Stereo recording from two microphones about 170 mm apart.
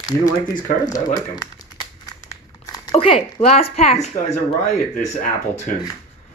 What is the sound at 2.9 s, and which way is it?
A woman's voice, 35° left (ahead or behind).